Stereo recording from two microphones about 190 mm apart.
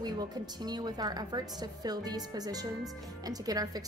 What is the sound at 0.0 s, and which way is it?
A woman's voice, 20° right (ahead or behind).